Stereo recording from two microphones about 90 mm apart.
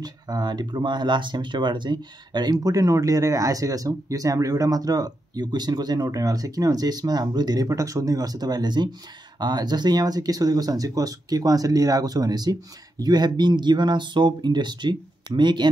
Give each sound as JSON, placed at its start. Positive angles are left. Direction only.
{"t": 0.0, "sound": "speech", "side_deg": -50}